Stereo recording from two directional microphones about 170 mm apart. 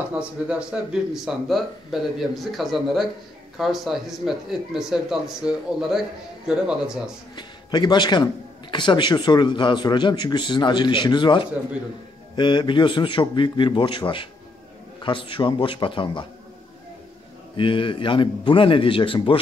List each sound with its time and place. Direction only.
0.1 s speech: 5° right (ahead or behind)
7.3 s a man's voice: 25° left (ahead or behind)
17.6 s speech: 30° left (ahead or behind)